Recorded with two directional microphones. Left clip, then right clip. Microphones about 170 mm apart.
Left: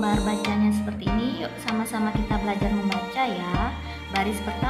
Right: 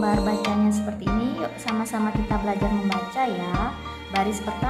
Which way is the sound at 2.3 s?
20° right (ahead or behind).